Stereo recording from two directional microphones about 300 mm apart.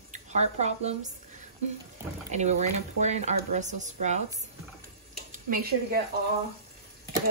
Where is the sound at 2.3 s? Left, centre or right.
Right.